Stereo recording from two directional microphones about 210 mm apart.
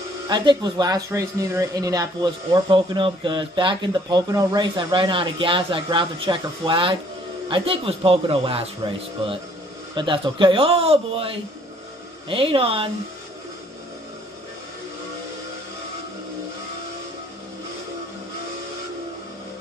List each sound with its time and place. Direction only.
0.3 s speech: 20° right (ahead or behind)
9.9 s speech: 25° right (ahead or behind)